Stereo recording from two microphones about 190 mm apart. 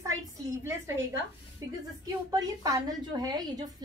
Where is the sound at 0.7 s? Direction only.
15° right (ahead or behind).